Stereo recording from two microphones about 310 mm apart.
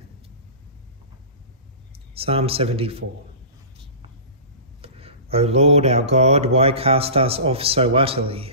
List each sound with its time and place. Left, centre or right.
2.1 s speech: centre
4.8 s speech: centre